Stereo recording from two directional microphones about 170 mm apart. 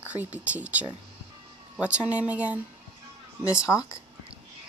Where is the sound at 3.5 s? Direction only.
20° left (ahead or behind).